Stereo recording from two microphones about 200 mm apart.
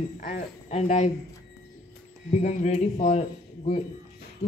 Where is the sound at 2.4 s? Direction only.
35° left (ahead or behind).